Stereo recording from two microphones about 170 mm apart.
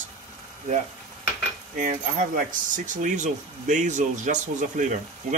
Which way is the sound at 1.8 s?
50° right (ahead or behind).